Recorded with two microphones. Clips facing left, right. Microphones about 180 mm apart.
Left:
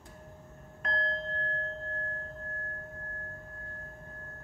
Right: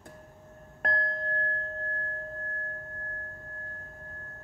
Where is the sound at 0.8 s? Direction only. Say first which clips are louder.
Right 4 dB; 55° right (ahead or behind).